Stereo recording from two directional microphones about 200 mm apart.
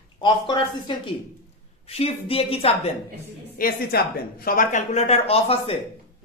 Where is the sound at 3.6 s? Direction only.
50° left (ahead or behind); by 5.8 s 30° left (ahead or behind).